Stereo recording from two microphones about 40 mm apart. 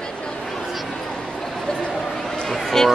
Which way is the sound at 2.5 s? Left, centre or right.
Centre.